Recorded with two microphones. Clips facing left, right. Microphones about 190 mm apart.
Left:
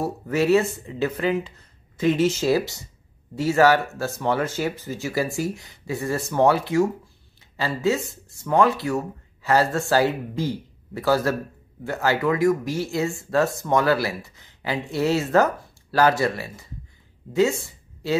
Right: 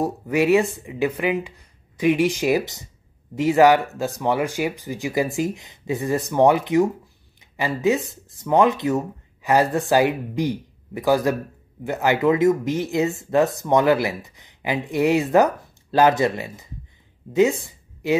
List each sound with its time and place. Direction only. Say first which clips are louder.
0.0 s speech: right 2 dB; 15° right (ahead or behind)